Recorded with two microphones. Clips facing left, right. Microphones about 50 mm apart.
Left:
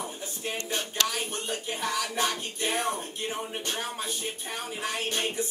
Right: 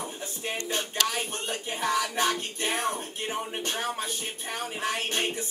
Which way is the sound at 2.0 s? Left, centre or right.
Centre.